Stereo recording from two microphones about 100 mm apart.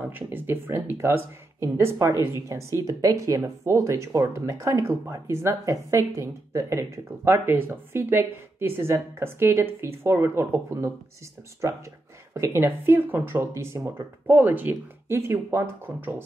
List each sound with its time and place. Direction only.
0.0 s speech: 20° right (ahead or behind)